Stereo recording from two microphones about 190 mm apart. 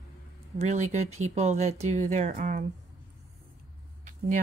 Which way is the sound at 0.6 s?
35° right (ahead or behind).